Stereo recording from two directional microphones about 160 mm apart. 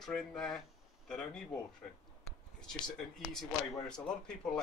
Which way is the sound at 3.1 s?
Centre (ahead or behind).